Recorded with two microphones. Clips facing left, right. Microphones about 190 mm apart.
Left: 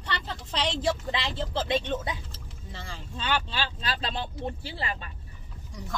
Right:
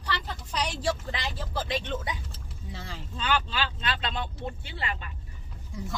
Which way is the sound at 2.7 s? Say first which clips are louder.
Even; 5° right (ahead or behind).